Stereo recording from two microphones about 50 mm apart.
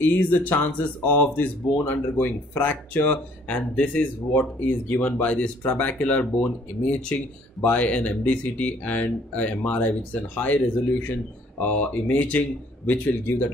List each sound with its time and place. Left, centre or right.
0.0 s speech: left